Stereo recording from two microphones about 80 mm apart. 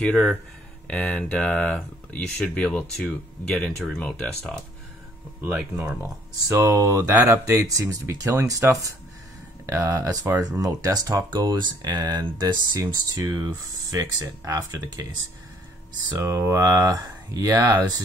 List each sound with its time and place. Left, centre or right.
0.0 s speech: centre
5.4 s speech: right
6.5 s speech: right
12.8 s speech: right
14.9 s speech: right
16.2 s speech: right